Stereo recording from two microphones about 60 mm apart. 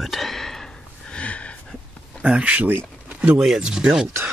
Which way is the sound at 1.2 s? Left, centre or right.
Left.